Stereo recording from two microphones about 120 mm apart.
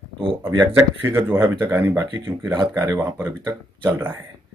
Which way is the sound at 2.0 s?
35° right (ahead or behind).